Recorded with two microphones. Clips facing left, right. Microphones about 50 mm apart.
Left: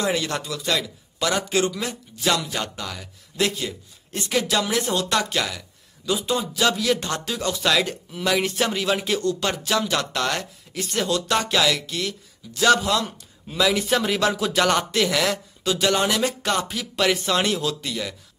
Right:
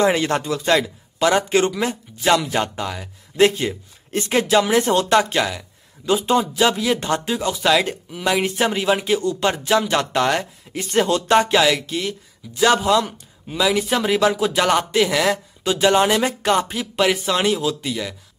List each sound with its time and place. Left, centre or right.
0.0 s a man's voice: right
6.0 s speech: right; by 15.4 s centre
15.6 s speech: right; by 18.1 s centre